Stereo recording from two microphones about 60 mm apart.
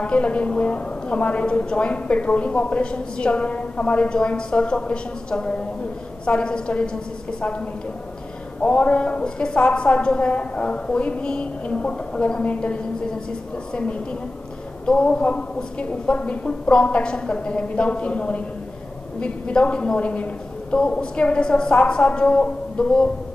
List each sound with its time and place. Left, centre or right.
0.0 s a woman's voice: centre
8.6 s a woman's voice: centre